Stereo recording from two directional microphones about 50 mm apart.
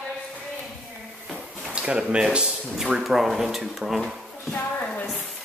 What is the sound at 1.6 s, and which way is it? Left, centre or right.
Speech, centre.